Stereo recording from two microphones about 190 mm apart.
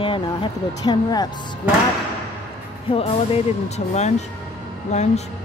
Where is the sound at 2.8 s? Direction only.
30° left (ahead or behind).